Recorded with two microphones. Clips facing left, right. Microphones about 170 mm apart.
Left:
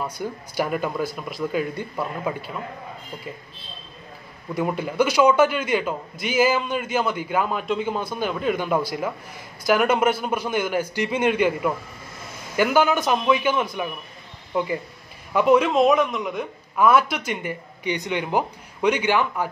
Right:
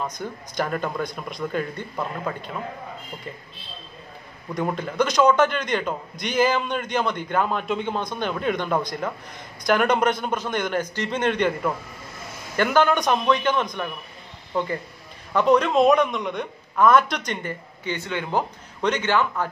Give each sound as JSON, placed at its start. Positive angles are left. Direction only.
{"t": 0.0, "sound": "a man's voice", "side_deg": 10}
{"t": 4.6, "sound": "a man's voice", "side_deg": 5}